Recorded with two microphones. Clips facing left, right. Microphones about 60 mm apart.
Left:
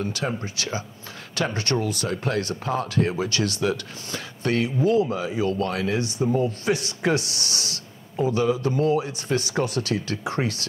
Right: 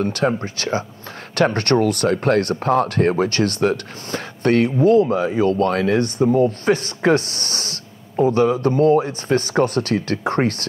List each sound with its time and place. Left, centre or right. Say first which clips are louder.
0.0 s speech: right 8 dB; right